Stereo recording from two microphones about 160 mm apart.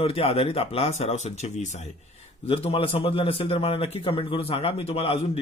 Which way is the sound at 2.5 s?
35° left (ahead or behind).